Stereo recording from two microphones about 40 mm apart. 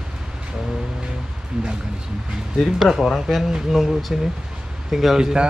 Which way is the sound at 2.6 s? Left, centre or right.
Centre.